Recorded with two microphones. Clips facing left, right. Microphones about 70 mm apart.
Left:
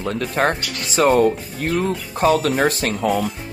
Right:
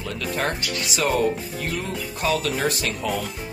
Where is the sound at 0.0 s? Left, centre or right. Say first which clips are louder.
Left 6 dB; left.